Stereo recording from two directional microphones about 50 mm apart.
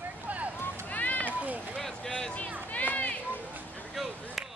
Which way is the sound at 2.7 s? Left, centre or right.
Left.